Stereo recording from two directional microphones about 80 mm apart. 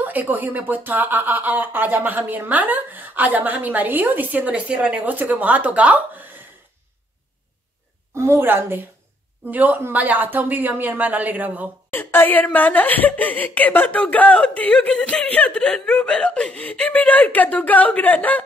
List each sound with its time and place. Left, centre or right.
0.0 s speech: right
8.2 s speech: right
11.9 s speech: left